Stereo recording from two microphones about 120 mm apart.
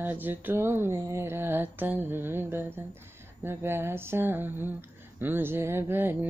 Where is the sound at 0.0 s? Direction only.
15° right (ahead or behind).